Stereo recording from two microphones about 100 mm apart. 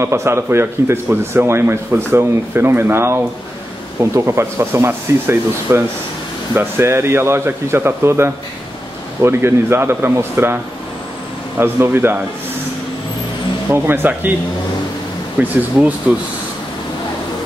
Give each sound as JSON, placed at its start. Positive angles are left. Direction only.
{"t": 0.0, "sound": "speech", "side_deg": -25}
{"t": 13.7, "sound": "speech", "side_deg": -20}
{"t": 15.4, "sound": "speech", "side_deg": -20}